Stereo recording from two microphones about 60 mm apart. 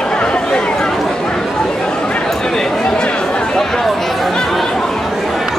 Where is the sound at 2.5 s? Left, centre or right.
Centre.